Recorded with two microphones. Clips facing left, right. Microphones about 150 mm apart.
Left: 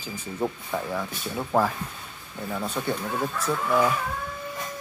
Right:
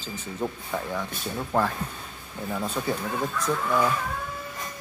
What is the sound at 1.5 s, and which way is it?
Speech, 10° left (ahead or behind).